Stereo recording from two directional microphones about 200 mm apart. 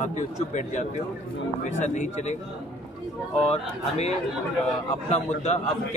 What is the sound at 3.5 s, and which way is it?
Speech, 30° left (ahead or behind).